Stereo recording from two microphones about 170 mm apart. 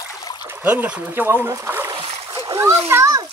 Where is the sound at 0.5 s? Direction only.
10° right (ahead or behind).